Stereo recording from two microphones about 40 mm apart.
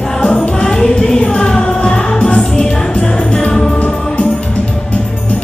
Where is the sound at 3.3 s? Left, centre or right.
Left.